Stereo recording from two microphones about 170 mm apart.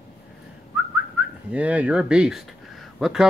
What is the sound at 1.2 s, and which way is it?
Whistling, 5° right (ahead or behind).